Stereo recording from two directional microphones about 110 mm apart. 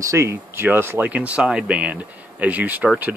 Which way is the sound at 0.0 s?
30° right (ahead or behind).